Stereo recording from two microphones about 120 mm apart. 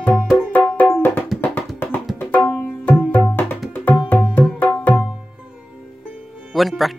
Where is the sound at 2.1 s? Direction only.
15° left (ahead or behind).